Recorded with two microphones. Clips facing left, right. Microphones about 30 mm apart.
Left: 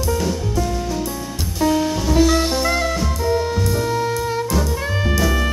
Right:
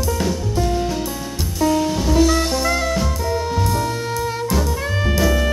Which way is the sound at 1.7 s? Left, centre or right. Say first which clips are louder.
Even; centre.